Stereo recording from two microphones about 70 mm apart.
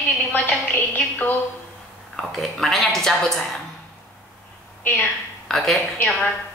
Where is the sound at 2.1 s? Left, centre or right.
Centre.